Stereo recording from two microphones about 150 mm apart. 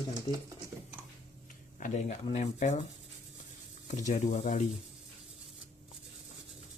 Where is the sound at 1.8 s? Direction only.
55° left (ahead or behind).